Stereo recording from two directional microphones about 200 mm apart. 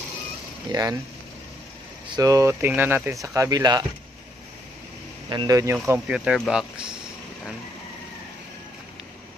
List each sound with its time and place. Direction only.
0.7 s speech: 15° right (ahead or behind)
2.0 s speech: 20° right (ahead or behind)
5.3 s speech: 20° right (ahead or behind)
5.9 s speech: 5° right (ahead or behind)